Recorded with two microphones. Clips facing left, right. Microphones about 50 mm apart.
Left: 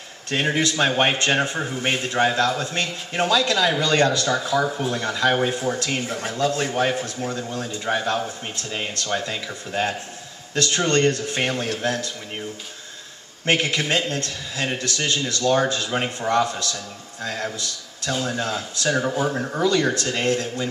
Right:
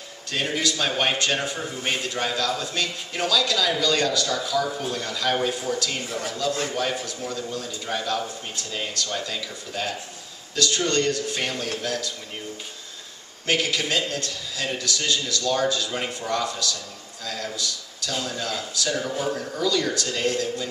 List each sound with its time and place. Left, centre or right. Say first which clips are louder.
0.3 s a man's voice: left 4 dB; left
6.7 s a man's voice: left 4 dB; left
7.0 s a man's voice: left 3 dB; left
13.5 s a man's voice: left 3 dB; left